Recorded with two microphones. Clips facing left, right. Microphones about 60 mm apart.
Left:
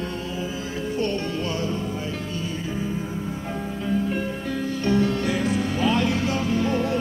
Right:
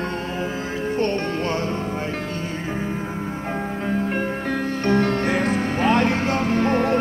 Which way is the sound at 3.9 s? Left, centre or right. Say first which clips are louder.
Right 1 dB; right.